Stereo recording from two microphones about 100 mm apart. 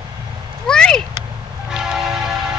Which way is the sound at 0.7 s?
5° left (ahead or behind).